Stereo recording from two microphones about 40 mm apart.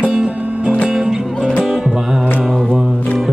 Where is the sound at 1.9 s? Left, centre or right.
Centre.